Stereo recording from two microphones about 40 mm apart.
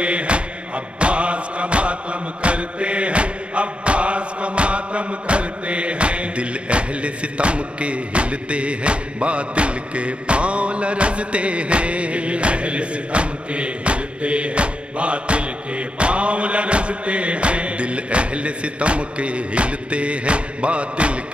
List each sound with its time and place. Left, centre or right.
0.0 s music: right
0.9 s chant: right